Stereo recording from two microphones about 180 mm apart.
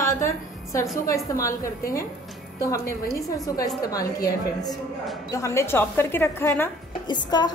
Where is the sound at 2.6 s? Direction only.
15° left (ahead or behind).